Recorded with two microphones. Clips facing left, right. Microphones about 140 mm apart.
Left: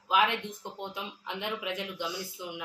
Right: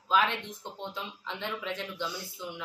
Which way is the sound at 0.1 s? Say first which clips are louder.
Left 1 dB; 15° left (ahead or behind).